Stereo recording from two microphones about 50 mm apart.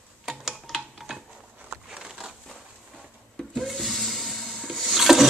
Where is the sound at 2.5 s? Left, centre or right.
Centre.